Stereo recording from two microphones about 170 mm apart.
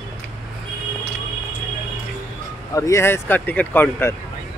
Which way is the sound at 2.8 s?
15° left (ahead or behind).